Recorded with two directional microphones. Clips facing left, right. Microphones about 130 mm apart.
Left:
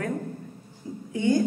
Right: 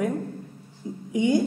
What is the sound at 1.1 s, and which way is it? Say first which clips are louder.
Speech: right 2 dB; 15° right (ahead or behind).